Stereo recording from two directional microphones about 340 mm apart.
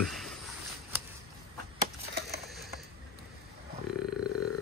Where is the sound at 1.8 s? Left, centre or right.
Right.